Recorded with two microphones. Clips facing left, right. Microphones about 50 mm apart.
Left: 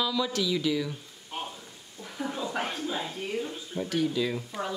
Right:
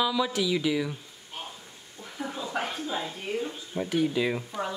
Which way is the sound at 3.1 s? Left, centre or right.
Centre.